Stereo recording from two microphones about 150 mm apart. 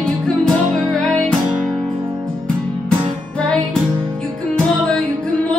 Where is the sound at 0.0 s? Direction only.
5° left (ahead or behind).